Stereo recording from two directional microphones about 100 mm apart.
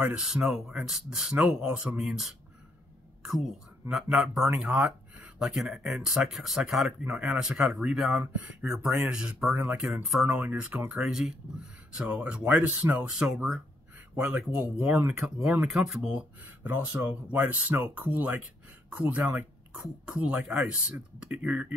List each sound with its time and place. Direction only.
0.0 s speech: 10° right (ahead or behind)
11.1 s speech: 5° right (ahead or behind)
13.9 s a sound: 15° right (ahead or behind)
14.5 s speech: 15° right (ahead or behind)